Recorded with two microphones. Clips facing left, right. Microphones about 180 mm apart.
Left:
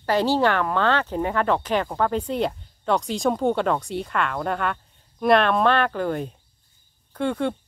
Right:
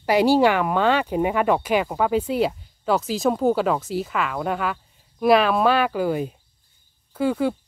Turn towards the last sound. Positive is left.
turn(degrees=-5)  # may be behind; listen again after turning